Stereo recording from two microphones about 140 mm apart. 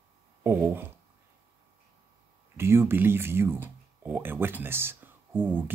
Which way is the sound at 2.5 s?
15° right (ahead or behind).